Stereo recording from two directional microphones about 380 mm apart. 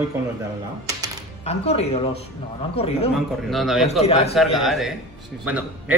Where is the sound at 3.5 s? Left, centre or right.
Centre.